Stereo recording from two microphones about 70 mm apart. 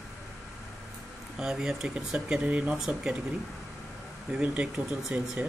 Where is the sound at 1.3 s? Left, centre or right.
Centre.